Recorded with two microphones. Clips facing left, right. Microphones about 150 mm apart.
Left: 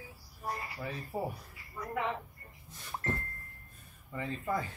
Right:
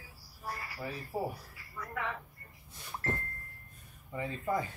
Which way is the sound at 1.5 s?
20° left (ahead or behind).